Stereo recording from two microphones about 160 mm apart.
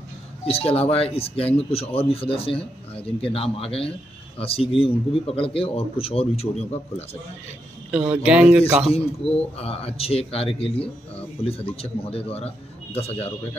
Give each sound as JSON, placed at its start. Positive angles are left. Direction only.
{"t": 0.5, "sound": "speech", "side_deg": 40}
{"t": 8.3, "sound": "speech", "side_deg": -5}
{"t": 8.8, "sound": "speech", "side_deg": 40}